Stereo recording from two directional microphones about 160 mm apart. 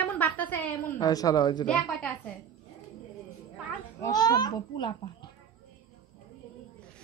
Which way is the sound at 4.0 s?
25° left (ahead or behind).